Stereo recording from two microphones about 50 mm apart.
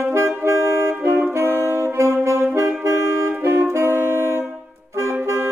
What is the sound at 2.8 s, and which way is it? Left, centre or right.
Music, right.